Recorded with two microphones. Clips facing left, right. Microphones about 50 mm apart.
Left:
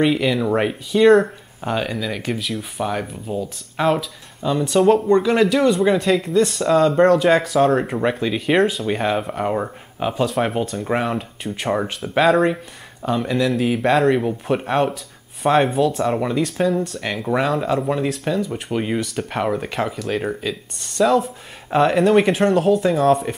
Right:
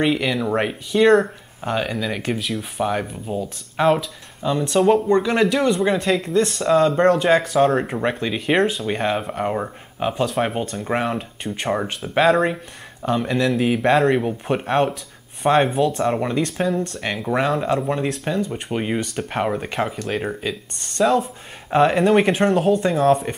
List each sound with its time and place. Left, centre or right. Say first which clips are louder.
0.0 s speech: left 2 dB; centre